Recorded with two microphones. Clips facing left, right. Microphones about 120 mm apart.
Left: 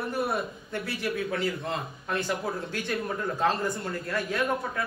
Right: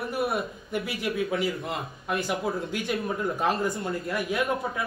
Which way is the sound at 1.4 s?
5° right (ahead or behind).